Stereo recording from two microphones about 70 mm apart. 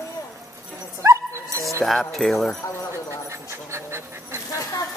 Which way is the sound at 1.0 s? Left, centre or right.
Right.